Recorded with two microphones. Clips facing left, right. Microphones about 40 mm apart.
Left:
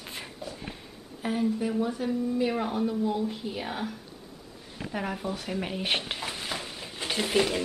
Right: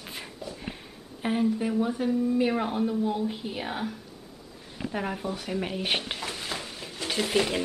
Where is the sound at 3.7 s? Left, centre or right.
Centre.